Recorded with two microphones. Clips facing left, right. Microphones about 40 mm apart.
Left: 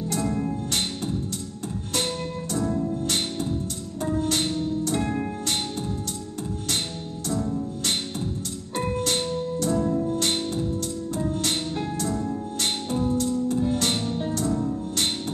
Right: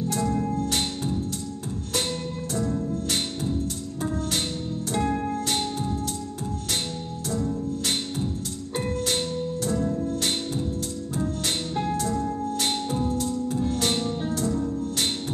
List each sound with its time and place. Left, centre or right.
0.1 s music: centre
2.6 s music: centre
4.3 s music: centre
7.2 s music: centre
9.7 s music: centre
11.4 s music: centre